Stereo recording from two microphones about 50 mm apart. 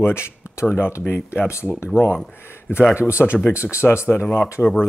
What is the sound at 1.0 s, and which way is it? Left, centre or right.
Speech, left.